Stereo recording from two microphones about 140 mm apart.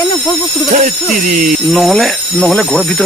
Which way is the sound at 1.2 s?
90° right.